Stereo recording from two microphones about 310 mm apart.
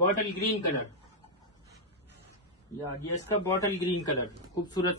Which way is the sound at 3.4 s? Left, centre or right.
Centre.